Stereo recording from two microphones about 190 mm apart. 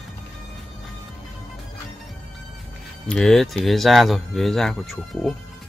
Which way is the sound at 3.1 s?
5° left (ahead or behind).